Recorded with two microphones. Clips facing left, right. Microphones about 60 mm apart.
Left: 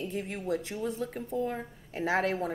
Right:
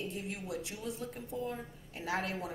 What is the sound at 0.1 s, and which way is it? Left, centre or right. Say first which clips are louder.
Speech: left 7 dB; left.